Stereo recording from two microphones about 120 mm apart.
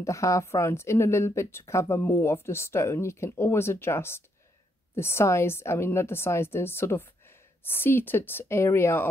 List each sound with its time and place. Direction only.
0.0 s speech: 25° left (ahead or behind)